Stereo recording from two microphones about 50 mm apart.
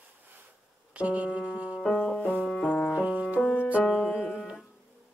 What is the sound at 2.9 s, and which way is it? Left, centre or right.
Music, right.